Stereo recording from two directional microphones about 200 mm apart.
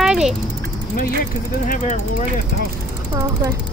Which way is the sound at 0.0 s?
Centre (ahead or behind).